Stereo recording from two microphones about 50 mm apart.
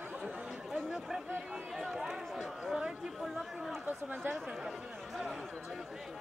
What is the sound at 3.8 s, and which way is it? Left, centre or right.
Chatter, right.